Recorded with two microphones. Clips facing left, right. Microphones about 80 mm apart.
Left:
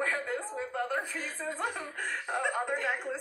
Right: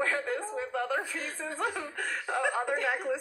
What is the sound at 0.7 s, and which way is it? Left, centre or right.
A woman's voice, left.